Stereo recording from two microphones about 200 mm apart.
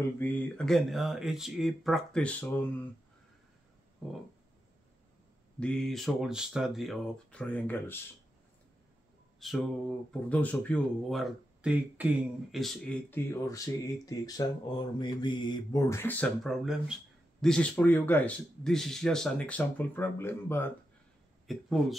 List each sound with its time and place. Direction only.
0.2 s speech: 5° left (ahead or behind)
5.6 s speech: 5° left (ahead or behind)
9.4 s speech: centre (ahead or behind)
21.5 s speech: centre (ahead or behind)